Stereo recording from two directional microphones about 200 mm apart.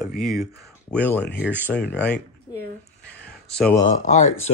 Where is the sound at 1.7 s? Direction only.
5° left (ahead or behind).